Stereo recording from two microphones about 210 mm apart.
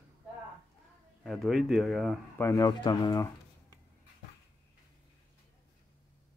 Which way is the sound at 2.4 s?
15° left (ahead or behind).